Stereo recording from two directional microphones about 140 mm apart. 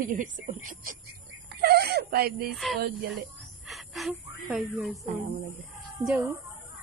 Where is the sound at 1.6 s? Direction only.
90° right.